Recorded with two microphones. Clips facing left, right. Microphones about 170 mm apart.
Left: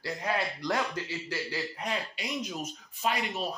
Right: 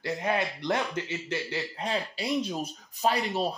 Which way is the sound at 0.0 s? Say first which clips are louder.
Right 3 dB; 20° right (ahead or behind).